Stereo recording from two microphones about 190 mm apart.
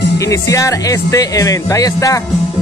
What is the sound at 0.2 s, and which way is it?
Speech, 15° left (ahead or behind).